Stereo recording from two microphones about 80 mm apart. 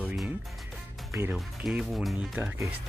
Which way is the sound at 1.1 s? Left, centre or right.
Right.